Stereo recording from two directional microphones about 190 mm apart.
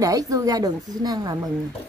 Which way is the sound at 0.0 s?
20° right (ahead or behind).